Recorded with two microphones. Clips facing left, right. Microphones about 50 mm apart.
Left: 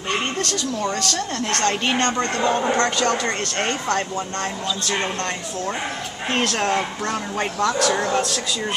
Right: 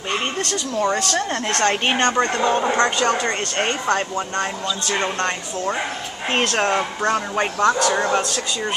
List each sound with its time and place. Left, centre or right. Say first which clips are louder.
0.5 s speech: right 3 dB; right
6.3 s speech: right 2 dB; right
7.1 s a man's voice: right 4 dB; centre